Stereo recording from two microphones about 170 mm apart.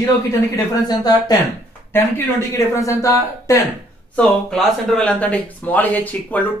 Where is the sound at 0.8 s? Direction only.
25° left (ahead or behind).